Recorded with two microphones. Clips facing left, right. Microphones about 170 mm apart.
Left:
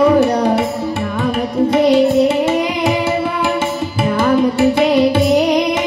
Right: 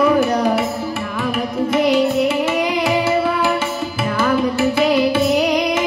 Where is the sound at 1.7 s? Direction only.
25° left (ahead or behind).